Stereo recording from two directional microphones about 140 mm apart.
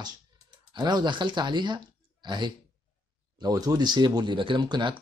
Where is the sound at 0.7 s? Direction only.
30° right (ahead or behind).